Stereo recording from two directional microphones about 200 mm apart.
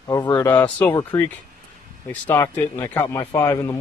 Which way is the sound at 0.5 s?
5° left (ahead or behind).